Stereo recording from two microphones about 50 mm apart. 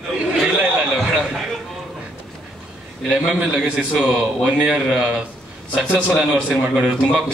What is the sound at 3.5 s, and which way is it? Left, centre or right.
A man's voice, centre.